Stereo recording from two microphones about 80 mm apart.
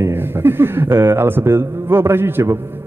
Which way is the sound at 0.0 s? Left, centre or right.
Right.